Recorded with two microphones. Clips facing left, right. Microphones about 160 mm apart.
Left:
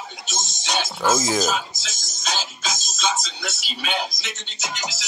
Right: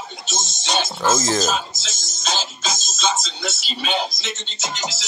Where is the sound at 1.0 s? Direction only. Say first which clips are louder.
Right 1 dB; 15° left (ahead or behind).